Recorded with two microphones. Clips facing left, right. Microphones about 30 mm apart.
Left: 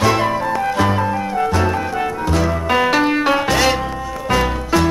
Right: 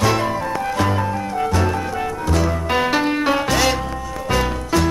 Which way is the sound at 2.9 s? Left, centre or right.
Left.